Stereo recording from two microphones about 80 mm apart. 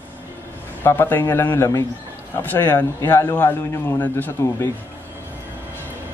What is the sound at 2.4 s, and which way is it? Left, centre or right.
A man's voice, left.